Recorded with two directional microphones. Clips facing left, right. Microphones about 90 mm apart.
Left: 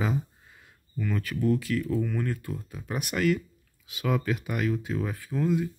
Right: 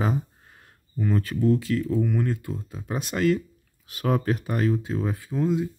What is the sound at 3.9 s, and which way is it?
Speech, 40° right (ahead or behind).